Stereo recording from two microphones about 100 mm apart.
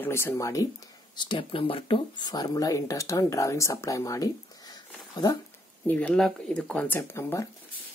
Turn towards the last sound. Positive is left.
turn(degrees=25)  # may be behind; listen again after turning